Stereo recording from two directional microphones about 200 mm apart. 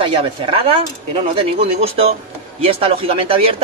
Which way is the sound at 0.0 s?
25° right (ahead or behind).